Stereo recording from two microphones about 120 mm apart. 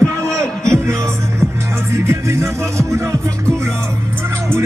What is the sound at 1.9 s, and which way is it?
Music, 25° right (ahead or behind).